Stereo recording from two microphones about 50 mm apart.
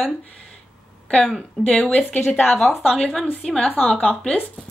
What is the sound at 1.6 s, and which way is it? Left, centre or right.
Speech, left.